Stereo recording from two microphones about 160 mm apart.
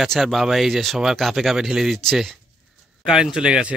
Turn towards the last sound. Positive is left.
turn(degrees=-5)  # may be behind; listen again after turning